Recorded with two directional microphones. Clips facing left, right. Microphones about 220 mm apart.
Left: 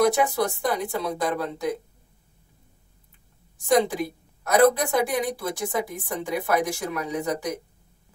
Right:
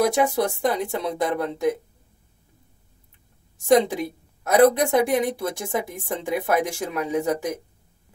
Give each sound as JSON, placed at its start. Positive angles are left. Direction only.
{"t": 0.1, "sound": "a woman's voice", "side_deg": -25}
{"t": 3.7, "sound": "a woman's voice", "side_deg": -25}